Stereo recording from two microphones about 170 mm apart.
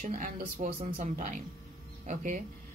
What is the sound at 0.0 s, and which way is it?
Speech, 50° right (ahead or behind).